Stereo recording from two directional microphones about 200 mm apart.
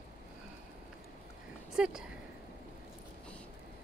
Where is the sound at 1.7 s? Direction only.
5° right (ahead or behind).